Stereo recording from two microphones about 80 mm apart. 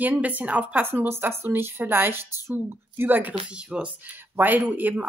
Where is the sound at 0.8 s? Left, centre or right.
Right.